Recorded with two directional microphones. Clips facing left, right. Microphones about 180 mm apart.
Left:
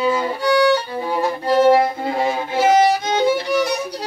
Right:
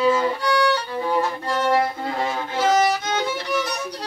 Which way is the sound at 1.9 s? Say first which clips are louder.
Left 5 dB; 10° left (ahead or behind).